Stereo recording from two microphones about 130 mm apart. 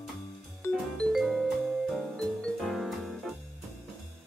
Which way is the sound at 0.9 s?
Centre (ahead or behind).